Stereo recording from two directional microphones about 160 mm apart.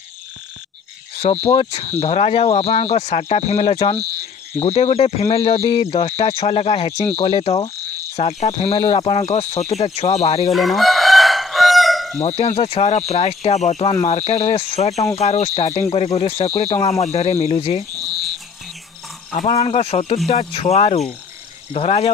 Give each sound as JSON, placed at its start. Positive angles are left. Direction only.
{"t": 1.5, "sound": "speech", "side_deg": 35}
{"t": 10.5, "sound": "chicken", "side_deg": 0}
{"t": 12.2, "sound": "speech", "side_deg": 45}
{"t": 19.3, "sound": "speech", "side_deg": 40}